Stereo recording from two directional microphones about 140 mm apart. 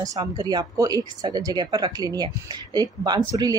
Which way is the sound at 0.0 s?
25° right (ahead or behind).